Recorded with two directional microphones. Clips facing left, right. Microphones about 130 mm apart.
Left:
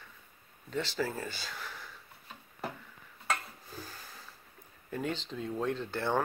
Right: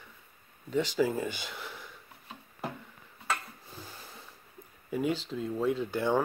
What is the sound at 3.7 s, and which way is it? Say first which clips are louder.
Snort: left 1 dB; 25° right (ahead or behind).